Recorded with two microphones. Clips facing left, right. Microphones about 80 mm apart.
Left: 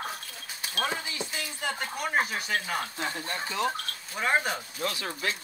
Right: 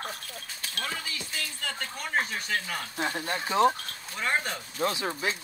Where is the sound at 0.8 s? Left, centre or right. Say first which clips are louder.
Left 4 dB; centre.